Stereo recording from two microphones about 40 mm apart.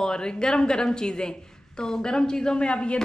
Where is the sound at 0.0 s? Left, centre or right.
Centre.